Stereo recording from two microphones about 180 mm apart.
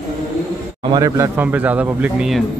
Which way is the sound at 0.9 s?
15° right (ahead or behind).